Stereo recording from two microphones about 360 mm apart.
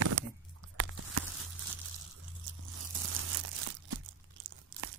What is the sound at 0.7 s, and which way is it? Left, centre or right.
Tearing, right.